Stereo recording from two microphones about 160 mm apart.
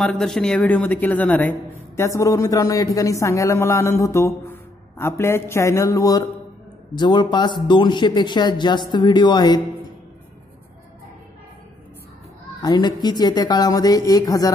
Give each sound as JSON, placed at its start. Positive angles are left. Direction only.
{"t": 0.0, "sound": "speech", "side_deg": 5}
{"t": 12.6, "sound": "speech", "side_deg": 25}